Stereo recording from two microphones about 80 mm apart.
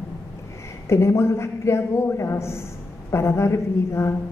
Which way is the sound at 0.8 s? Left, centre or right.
Left.